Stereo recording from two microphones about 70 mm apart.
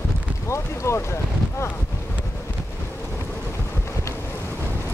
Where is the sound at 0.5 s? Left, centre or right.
Left.